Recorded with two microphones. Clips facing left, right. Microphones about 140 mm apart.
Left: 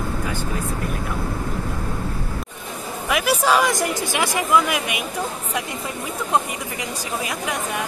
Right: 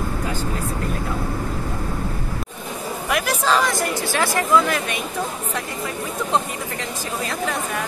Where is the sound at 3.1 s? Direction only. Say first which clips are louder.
Left 2 dB; 5° left (ahead or behind).